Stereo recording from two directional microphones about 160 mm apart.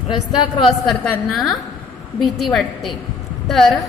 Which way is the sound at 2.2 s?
Centre (ahead or behind).